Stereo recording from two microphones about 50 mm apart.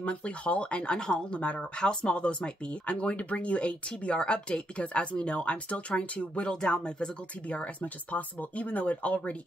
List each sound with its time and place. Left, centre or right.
0.0 s speech: left